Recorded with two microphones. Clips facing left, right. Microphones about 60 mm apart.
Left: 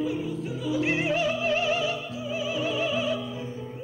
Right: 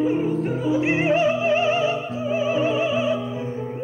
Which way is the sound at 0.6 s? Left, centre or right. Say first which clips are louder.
Right 5 dB; right.